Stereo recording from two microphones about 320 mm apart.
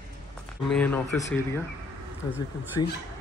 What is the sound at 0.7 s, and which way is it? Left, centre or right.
Speech, centre.